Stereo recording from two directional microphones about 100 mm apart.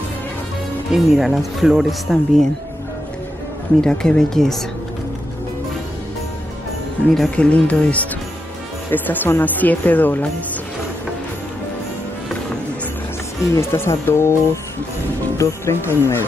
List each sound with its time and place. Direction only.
0.9 s speech: centre (ahead or behind)
3.8 s speech: 5° left (ahead or behind)
7.2 s speech: 10° left (ahead or behind)
13.5 s speech: 25° left (ahead or behind)